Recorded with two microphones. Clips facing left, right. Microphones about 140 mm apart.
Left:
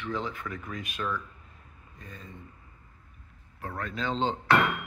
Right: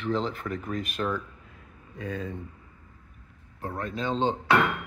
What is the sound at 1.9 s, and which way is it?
Speech, 80° right.